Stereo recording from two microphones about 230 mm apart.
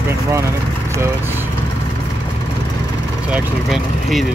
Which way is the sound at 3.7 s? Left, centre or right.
Centre.